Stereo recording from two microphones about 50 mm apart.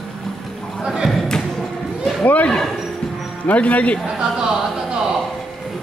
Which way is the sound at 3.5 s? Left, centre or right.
Left.